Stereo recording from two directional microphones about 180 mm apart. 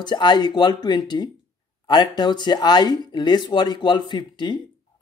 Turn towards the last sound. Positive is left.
turn(degrees=25)  # may be behind; listen again after turning